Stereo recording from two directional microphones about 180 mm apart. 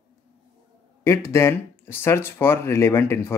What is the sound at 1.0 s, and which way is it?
Speech, 15° left (ahead or behind).